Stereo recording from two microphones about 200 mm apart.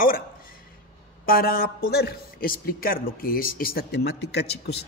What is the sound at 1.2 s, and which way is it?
A man's voice, 45° left (ahead or behind).